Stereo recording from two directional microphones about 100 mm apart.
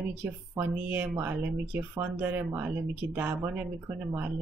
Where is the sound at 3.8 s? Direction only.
30° right (ahead or behind).